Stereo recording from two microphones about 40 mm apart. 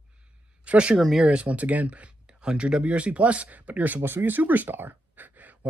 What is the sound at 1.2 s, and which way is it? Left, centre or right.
Speech, right.